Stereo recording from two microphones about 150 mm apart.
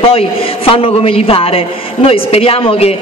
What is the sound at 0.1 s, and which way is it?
A woman's voice, 40° left (ahead or behind).